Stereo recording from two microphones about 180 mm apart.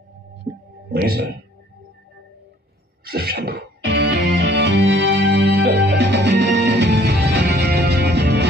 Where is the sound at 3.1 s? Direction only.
60° right (ahead or behind).